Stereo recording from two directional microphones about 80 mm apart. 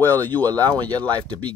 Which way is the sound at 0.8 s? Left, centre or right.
Right.